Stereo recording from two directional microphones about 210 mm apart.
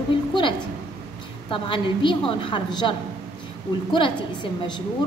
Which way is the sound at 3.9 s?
20° left (ahead or behind).